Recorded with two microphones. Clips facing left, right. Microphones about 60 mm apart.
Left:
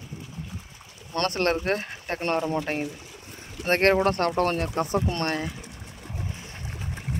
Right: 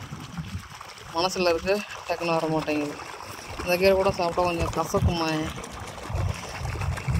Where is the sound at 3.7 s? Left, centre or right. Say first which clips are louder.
Even; left.